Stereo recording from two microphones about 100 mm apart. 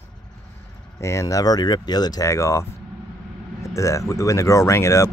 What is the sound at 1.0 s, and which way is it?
Speech, 30° left (ahead or behind).